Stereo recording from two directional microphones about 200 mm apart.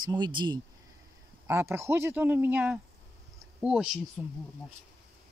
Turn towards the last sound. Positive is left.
turn(degrees=-5)  # may be behind; listen again after turning